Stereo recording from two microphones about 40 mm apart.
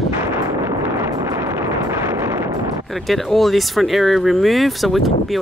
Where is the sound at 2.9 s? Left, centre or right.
Centre.